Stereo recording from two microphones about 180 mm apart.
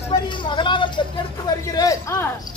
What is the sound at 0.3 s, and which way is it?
Vehicle, 25° left (ahead or behind).